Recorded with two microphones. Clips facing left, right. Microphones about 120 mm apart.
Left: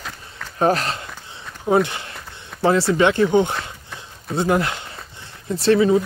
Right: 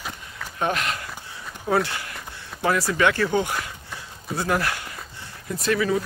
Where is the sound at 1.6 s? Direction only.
20° left (ahead or behind).